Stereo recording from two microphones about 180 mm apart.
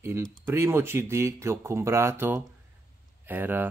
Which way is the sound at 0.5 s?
15° right (ahead or behind).